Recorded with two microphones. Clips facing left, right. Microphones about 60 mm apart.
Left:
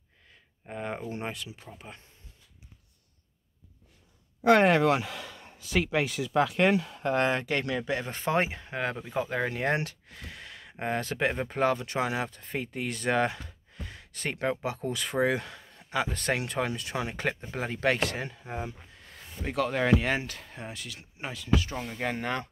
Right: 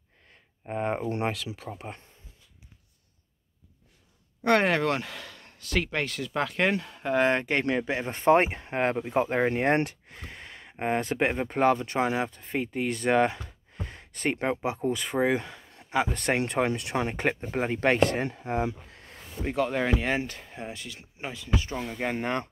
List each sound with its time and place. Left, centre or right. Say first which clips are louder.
0.7 s speech: right 6 dB; right
1.0 s speech: right 6 dB; right
1.7 s speech: right 7 dB; right
4.4 s speech: left 2 dB; centre
7.3 s speech: right 3 dB; right
16.9 s speech: right 4 dB; right
18.5 s speech: right 8 dB; right
19.7 s speech: left 2 dB; centre
20.2 s speech: right 3 dB; right
21.8 s speech: right 2 dB; centre
22.2 s speech: right 2 dB; right